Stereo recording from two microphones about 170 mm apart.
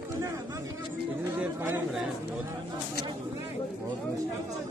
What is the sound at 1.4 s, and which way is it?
Speech, 10° right (ahead or behind).